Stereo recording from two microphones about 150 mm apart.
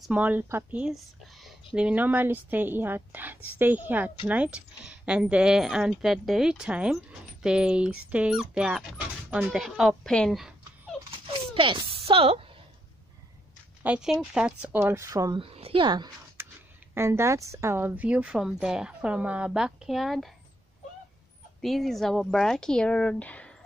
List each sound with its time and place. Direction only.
0.0 s speech: 10° right (ahead or behind)
11.1 s a sound: 35° right (ahead or behind)
13.8 s speech: 5° right (ahead or behind); by 15.3 s 20° right (ahead or behind)
15.3 s a woman's voice: 40° right (ahead or behind)
16.4 s a sound: 15° right (ahead or behind)
16.9 s speech: 15° right (ahead or behind); by 20.3 s centre (ahead or behind)
21.5 s speech: centre (ahead or behind)